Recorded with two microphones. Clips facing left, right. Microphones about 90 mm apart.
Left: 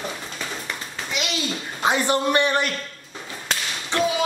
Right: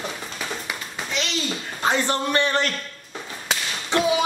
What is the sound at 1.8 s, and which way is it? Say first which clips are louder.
Speech: left 2 dB; 15° left (ahead or behind).